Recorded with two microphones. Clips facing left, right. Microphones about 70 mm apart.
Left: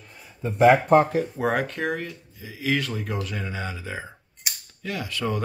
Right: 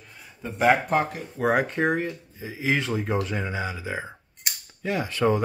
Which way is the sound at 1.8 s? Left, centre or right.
Right.